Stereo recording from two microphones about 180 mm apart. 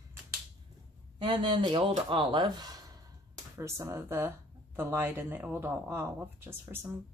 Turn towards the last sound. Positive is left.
turn(degrees=-10)  # may be behind; listen again after turning